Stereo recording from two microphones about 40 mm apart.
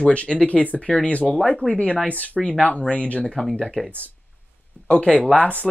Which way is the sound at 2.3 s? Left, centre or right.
Centre.